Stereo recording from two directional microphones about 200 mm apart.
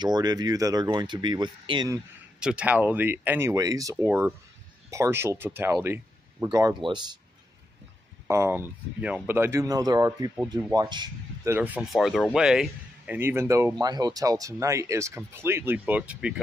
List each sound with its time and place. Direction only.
0.0 s speech: 20° right (ahead or behind)
2.4 s a man's voice: 5° right (ahead or behind); by 7.2 s 20° right (ahead or behind)
8.3 s a man's voice: 10° right (ahead or behind)
11.5 s a man's voice: 10° right (ahead or behind)